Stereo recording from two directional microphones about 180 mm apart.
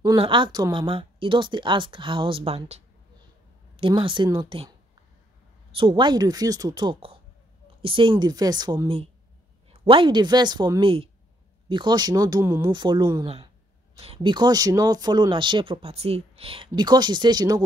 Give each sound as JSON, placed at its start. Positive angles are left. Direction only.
{"t": 0.0, "sound": "speech", "side_deg": -25}
{"t": 5.8, "sound": "speech", "side_deg": -30}